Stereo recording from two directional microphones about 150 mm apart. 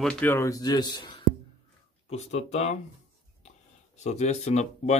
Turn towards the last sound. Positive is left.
turn(degrees=50)  # may be behind; listen again after turning